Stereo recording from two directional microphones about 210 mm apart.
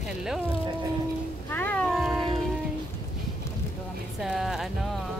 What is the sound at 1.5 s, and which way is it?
Cat, 10° left (ahead or behind).